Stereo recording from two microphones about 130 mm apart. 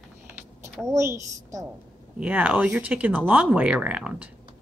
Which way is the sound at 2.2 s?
10° right (ahead or behind).